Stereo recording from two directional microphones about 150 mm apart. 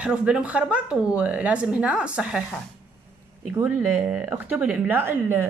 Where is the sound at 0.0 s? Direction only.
5° right (ahead or behind).